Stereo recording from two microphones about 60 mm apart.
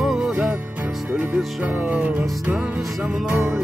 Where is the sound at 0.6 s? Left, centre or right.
Right.